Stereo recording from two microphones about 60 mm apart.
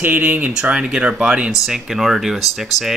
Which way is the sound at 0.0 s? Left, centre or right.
Right.